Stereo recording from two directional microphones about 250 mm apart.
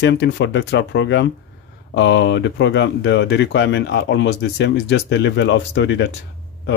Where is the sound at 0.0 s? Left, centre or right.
Left.